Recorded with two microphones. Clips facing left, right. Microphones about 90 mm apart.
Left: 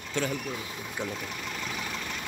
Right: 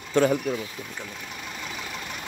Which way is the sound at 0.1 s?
50° right (ahead or behind).